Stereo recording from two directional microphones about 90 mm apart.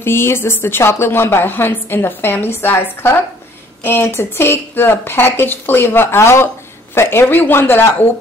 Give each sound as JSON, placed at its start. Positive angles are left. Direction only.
{"t": 0.0, "sound": "speech", "side_deg": 25}